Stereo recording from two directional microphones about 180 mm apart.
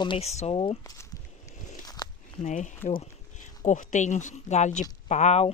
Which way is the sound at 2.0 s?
20° left (ahead or behind).